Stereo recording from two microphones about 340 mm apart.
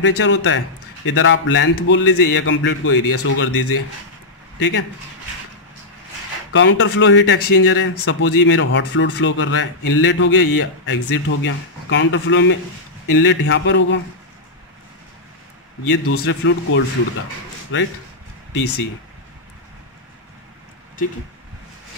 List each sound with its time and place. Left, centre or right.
0.0 s speech: left
6.5 s speech: left
15.9 s speech: left
18.5 s speech: left